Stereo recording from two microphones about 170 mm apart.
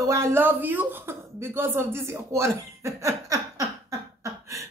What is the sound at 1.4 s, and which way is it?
Speech, 15° right (ahead or behind).